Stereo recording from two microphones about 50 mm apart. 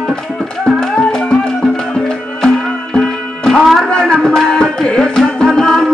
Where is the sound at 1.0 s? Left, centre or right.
Centre.